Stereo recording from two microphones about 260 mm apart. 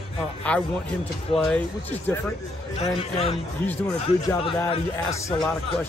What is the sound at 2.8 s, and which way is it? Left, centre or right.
Speech, left.